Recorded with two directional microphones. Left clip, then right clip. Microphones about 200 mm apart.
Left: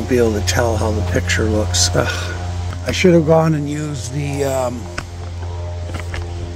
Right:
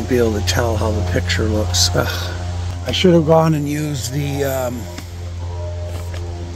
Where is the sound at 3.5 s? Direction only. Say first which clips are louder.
Right 1 dB; 40° right (ahead or behind).